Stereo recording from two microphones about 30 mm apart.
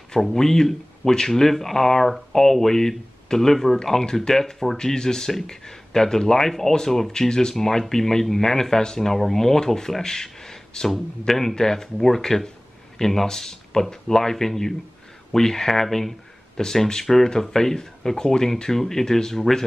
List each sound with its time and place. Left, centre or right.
0.1 s speech: centre
4.0 s speech: left
4.7 s speech: left